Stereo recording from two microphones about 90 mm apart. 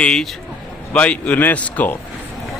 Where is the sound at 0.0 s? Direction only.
5° left (ahead or behind).